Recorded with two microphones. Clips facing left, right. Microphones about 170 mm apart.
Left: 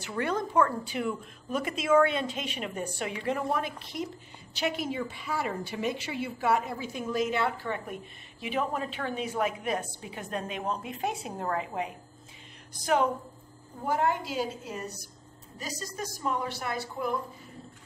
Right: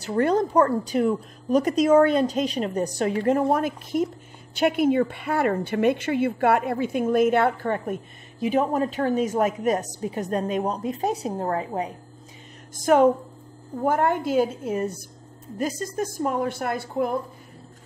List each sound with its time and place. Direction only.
0.0 s a woman's voice: 40° right (ahead or behind)
12.7 s speech: 50° right (ahead or behind)